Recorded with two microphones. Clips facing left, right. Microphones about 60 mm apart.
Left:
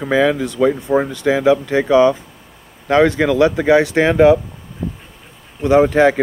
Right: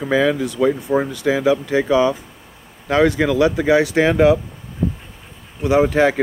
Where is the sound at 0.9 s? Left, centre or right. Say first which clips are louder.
Left 2 dB; centre.